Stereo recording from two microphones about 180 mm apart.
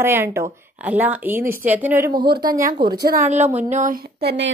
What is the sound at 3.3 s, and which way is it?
Speech, 40° right (ahead or behind).